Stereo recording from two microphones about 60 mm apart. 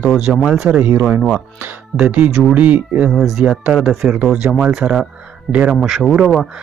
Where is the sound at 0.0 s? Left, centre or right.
Centre.